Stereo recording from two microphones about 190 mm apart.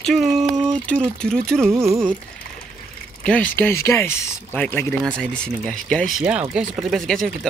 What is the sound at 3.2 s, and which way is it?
Speech, 5° left (ahead or behind).